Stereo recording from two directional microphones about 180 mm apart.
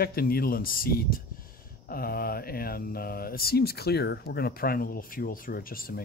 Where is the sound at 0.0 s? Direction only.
55° left (ahead or behind).